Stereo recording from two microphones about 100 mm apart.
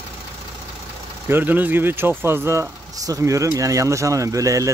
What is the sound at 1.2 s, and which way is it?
Speech, 20° right (ahead or behind).